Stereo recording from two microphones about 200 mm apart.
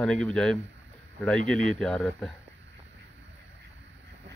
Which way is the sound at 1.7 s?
Centre (ahead or behind).